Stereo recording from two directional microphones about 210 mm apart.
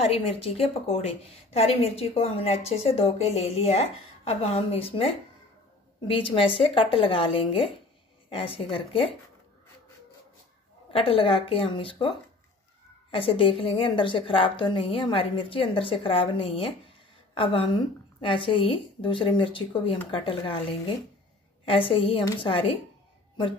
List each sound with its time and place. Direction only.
0.0 s a woman's voice: 25° left (ahead or behind)
10.9 s a woman's voice: 25° left (ahead or behind)
13.1 s a woman's voice: 25° left (ahead or behind)
21.6 s a woman's voice: 25° left (ahead or behind)